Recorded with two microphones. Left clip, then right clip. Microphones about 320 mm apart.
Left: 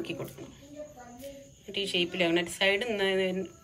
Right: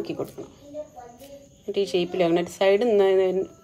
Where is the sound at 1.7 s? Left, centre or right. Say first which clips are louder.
Right 6 dB; right.